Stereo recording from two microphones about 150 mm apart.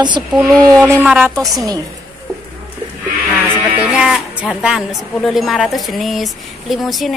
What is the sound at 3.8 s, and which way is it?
Speech, 5° right (ahead or behind).